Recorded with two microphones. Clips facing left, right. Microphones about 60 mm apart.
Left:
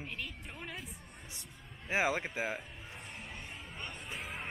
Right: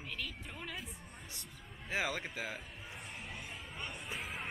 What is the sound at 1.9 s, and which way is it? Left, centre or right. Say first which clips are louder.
Speech: left 5 dB; centre.